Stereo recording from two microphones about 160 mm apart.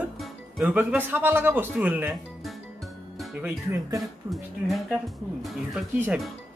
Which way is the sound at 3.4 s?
15° right (ahead or behind).